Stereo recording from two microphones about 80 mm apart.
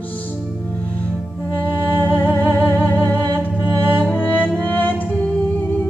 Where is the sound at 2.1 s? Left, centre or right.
Left.